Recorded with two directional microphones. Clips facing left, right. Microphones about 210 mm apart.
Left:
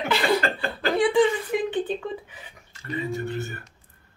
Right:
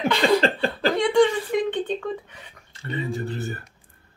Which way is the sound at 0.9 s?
5° left (ahead or behind).